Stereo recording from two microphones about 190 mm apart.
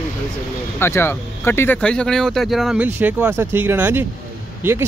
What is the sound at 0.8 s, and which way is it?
Speech, 15° left (ahead or behind).